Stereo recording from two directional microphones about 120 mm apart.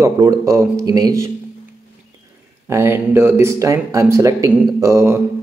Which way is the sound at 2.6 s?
20° right (ahead or behind).